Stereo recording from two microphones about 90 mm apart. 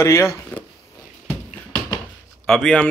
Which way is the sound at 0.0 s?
30° left (ahead or behind).